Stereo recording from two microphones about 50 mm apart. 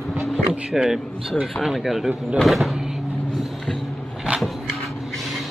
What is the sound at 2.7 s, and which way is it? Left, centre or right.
Vehicle, centre.